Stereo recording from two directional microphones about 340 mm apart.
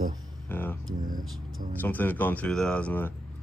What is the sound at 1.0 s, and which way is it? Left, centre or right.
Speech, right.